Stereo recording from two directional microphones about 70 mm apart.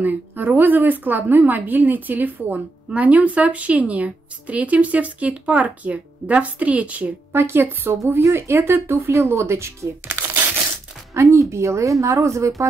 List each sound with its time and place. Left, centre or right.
0.0 s a woman's voice: right
7.3 s speech: right
11.1 s speech: right